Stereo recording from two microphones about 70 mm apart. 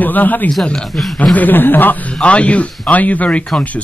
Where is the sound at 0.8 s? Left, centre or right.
Centre.